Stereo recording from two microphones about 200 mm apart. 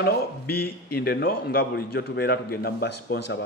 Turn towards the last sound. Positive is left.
turn(degrees=55)  # may be behind; listen again after turning